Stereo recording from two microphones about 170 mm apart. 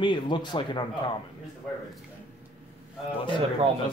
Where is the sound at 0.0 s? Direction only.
25° left (ahead or behind).